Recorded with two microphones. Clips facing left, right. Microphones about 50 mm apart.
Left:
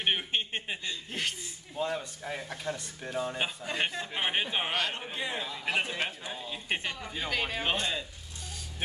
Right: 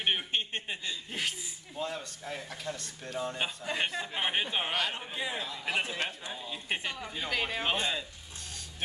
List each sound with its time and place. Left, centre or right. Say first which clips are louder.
0.0 s a man's voice: left 1 dB; centre
1.8 s a man's voice: left 4 dB; centre